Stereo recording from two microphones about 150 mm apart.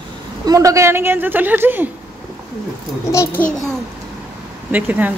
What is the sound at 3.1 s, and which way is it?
Speech, 20° left (ahead or behind).